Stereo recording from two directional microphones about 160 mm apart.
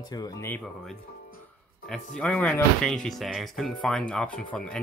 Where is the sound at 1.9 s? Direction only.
5° left (ahead or behind).